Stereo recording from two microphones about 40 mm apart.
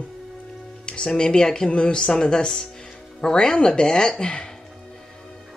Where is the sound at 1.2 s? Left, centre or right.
Centre.